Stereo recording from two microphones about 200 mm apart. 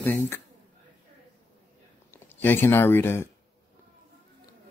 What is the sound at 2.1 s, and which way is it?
Speech, 10° left (ahead or behind).